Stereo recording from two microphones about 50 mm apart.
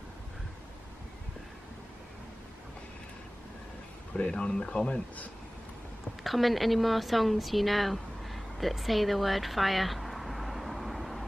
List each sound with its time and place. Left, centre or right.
4.1 s speech: left
6.2 s speech: centre